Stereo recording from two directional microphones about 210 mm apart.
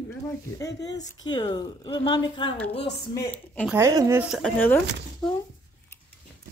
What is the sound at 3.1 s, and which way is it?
Speech, 10° left (ahead or behind).